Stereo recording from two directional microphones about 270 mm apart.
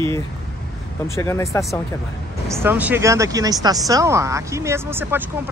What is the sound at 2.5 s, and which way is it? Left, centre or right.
Speech, centre.